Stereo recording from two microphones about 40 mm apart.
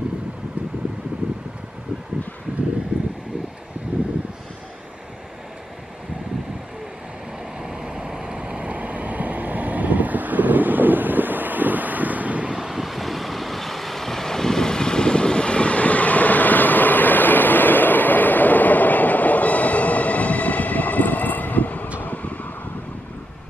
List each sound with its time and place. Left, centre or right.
2.9 s a sound: right
7.6 s vehicle: right
12.5 s vehicle: centre; by 21.8 s left
22.0 s wind: left